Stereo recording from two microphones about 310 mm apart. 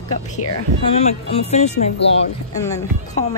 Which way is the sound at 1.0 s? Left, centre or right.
Left.